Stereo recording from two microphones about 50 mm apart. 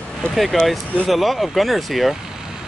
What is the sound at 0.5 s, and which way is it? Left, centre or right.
Speech, centre.